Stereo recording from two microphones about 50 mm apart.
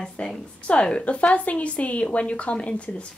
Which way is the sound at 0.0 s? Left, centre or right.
Left.